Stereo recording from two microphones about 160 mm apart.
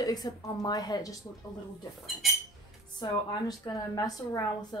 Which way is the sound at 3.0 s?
25° left (ahead or behind).